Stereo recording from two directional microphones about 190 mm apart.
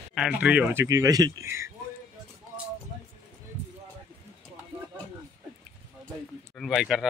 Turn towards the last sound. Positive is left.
turn(degrees=0)  # may be behind; listen again after turning